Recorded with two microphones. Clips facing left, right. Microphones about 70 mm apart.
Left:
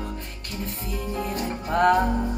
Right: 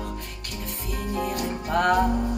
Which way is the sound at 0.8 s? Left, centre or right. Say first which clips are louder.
Right 2 dB; right.